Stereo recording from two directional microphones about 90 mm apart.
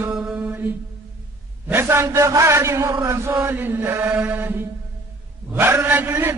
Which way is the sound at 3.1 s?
25° right (ahead or behind).